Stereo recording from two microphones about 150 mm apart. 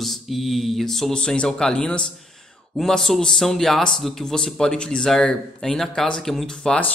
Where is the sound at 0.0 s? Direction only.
Centre (ahead or behind).